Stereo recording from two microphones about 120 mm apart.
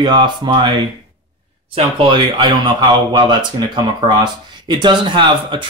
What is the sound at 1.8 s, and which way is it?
Speech, 45° right (ahead or behind).